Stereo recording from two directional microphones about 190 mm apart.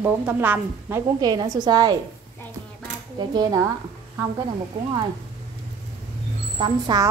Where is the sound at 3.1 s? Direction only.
20° right (ahead or behind).